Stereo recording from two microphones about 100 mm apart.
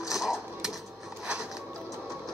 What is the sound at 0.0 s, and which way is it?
Dishes, 5° right (ahead or behind).